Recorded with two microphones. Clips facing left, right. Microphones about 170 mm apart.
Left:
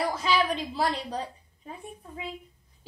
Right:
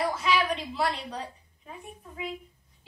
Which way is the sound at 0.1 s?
35° left (ahead or behind).